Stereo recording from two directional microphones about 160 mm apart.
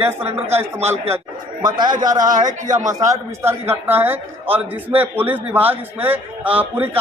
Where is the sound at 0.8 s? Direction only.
15° right (ahead or behind).